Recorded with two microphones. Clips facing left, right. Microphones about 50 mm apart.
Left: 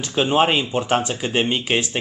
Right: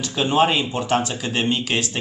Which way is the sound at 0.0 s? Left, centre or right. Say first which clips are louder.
Left 1 dB; left.